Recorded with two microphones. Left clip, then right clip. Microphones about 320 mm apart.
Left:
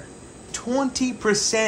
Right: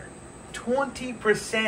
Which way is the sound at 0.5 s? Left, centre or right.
Left.